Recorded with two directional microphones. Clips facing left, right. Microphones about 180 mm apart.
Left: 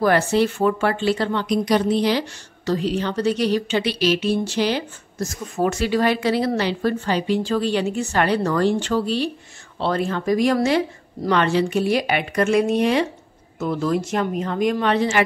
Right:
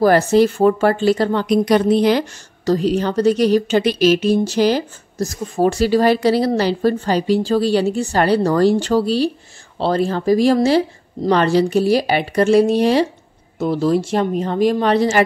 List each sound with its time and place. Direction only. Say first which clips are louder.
0.0 s a woman's voice: right 5 dB; 40° right (ahead or behind)
1.5 s a woman's voice: right 5 dB; 55° right (ahead or behind); by 15.2 s 40° right (ahead or behind)